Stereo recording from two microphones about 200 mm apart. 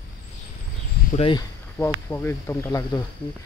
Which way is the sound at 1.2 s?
25° left (ahead or behind).